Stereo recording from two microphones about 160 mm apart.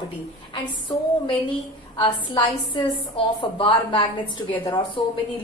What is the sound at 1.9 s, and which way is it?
A woman's voice, 30° left (ahead or behind).